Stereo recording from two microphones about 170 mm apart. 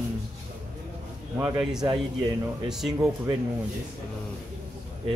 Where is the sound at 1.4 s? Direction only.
10° right (ahead or behind).